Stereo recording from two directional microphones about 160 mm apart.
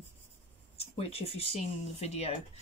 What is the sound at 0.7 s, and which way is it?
Speech, 40° left (ahead or behind).